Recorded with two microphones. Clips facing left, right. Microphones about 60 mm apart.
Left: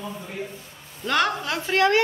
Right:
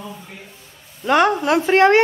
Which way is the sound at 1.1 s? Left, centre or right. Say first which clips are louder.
Right 8 dB; right.